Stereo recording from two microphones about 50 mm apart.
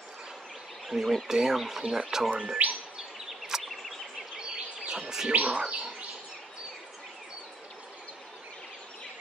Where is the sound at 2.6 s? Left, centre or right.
Right.